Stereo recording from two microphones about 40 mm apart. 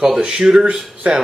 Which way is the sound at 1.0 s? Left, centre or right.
Right.